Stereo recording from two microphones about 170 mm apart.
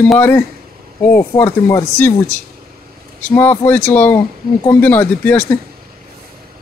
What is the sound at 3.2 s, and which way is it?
Speech, 10° left (ahead or behind).